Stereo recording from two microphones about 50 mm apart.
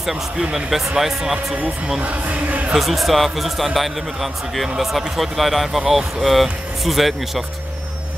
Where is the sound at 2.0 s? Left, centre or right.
Right.